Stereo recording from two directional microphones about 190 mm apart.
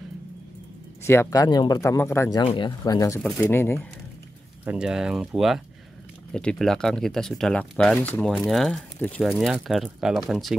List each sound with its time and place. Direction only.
1.0 s speech: 15° left (ahead or behind)
2.4 s speech: 25° left (ahead or behind)
3.2 s speech: centre (ahead or behind)
3.4 s speech: 15° left (ahead or behind)
4.6 s speech: 5° right (ahead or behind)